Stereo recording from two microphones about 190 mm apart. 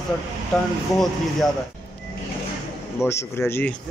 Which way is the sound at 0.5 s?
5° left (ahead or behind).